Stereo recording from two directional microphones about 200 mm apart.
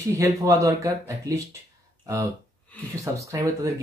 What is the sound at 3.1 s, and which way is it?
Speech, 15° right (ahead or behind).